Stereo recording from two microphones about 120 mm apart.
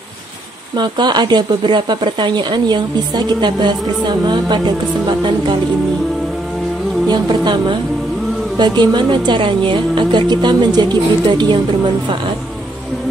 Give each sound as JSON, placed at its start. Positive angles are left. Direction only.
{"t": 0.7, "sound": "a woman's voice", "side_deg": -40}
{"t": 7.1, "sound": "a woman's voice", "side_deg": -40}